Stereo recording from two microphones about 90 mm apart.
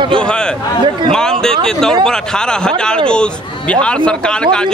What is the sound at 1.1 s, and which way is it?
Speech, 5° left (ahead or behind).